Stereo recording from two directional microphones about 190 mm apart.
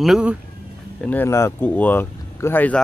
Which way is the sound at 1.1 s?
10° left (ahead or behind).